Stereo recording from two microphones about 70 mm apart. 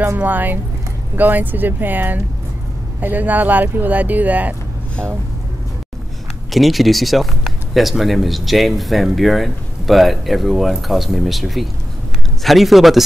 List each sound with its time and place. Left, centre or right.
0.2 s speech: right
6.5 s speech: centre